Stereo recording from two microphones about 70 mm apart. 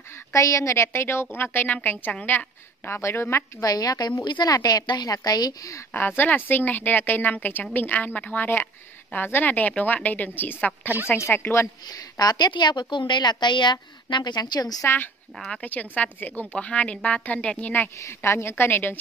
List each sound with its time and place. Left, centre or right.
0.1 s a woman's voice: left
3.0 s a woman's voice: left
3.6 s a woman's voice: left
5.9 s a woman's voice: left
11.8 s a woman's voice: left
15.3 s speech: centre
15.6 s a woman's voice: left
17.9 s a woman's voice: left